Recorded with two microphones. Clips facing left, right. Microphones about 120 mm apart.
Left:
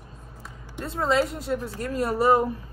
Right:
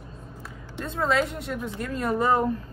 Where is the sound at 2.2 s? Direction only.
10° left (ahead or behind).